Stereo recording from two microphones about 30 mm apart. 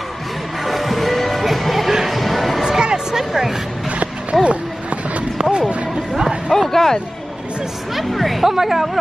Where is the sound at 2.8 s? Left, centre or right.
Right.